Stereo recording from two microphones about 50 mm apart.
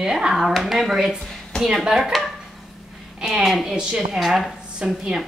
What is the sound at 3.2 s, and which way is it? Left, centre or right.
A woman's voice, centre.